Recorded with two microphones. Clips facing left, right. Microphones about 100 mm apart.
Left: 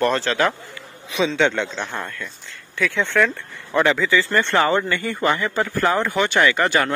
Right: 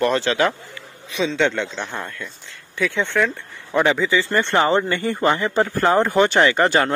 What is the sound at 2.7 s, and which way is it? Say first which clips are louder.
Speech: left 1 dB; 20° right (ahead or behind).